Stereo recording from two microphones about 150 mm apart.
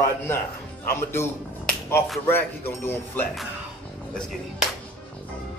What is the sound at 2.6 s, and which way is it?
Speech, 15° left (ahead or behind).